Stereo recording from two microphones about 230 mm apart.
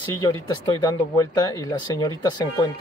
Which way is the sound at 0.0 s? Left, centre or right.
Centre.